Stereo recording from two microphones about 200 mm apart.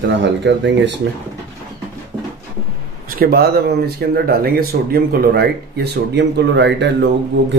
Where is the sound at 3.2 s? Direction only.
50° right (ahead or behind).